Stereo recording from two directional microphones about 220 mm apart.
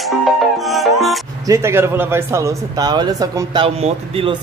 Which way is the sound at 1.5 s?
10° right (ahead or behind).